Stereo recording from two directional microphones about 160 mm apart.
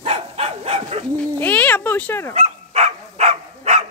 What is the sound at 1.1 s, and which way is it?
Speech, 10° left (ahead or behind).